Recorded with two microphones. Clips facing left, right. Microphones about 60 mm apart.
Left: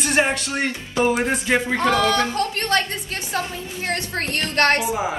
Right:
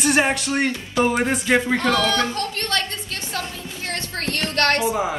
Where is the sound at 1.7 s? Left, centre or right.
Left.